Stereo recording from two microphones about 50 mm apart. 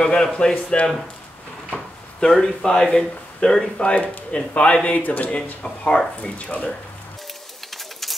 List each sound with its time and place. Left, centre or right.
0.0 s a man's voice: centre
1.7 s a sound: centre
2.4 s speech: centre
7.7 s bird: centre